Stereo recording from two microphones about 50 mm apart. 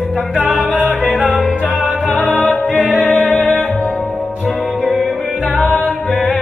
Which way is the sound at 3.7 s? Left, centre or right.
Centre.